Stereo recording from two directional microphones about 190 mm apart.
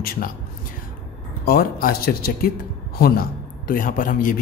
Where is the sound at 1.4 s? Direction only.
50° left (ahead or behind).